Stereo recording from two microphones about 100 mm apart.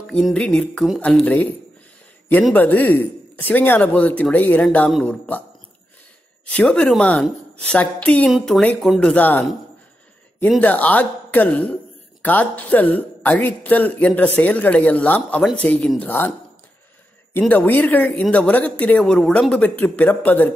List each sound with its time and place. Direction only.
0.0 s speech: 5° left (ahead or behind)
2.5 s speech: 15° left (ahead or behind)
6.4 s speech: 10° left (ahead or behind)
9.1 s speech: 20° left (ahead or behind)
10.6 s speech: 15° left (ahead or behind)
17.4 s speech: 15° left (ahead or behind)